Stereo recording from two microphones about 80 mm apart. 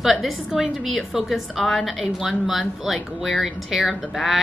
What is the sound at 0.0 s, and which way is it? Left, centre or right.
A woman's voice, centre.